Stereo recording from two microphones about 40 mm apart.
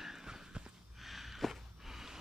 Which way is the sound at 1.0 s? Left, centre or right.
Centre.